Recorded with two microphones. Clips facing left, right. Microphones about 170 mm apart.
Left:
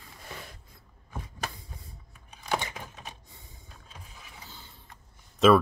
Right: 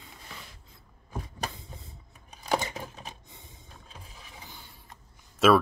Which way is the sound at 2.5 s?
40° right (ahead or behind).